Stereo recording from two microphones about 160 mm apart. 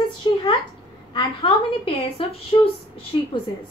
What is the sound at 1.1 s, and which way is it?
A woman's voice, 35° left (ahead or behind).